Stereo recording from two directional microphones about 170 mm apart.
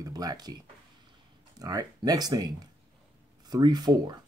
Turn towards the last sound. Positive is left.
turn(degrees=-25)  # may be behind; listen again after turning